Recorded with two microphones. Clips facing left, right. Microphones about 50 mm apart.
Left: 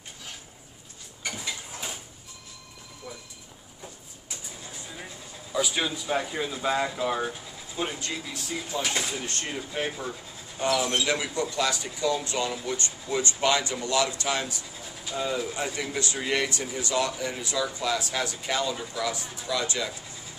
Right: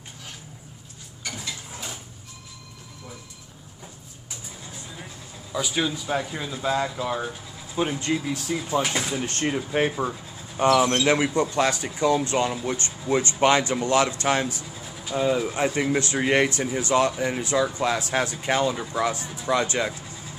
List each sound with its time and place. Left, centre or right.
1.4 s a sound: centre
5.5 s speech: centre
7.7 s speech: centre; by 14.6 s right
15.0 s speech: right